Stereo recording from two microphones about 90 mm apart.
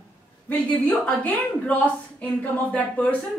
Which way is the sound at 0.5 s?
15° left (ahead or behind).